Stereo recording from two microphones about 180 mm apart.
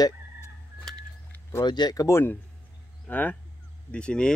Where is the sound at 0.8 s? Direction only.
10° left (ahead or behind).